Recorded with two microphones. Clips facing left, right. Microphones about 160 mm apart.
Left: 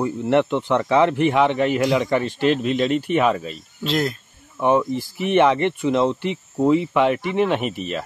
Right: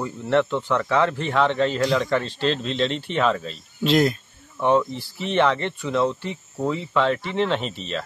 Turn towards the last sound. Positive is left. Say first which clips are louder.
# left 3 dB
turn(degrees=10)  # may be behind; listen again after turning